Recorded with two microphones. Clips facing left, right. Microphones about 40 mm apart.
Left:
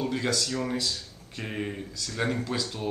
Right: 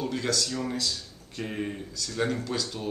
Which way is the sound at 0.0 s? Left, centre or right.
Centre.